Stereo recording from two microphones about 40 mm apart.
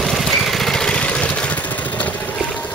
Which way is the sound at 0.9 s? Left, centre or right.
Left.